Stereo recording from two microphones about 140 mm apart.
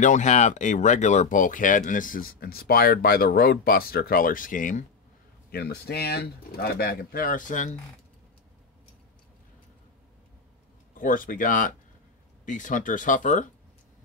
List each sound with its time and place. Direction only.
0.0 s speech: 60° left (ahead or behind)
5.5 s speech: 90° left; by 7.7 s 65° left (ahead or behind)
11.0 s speech: 80° left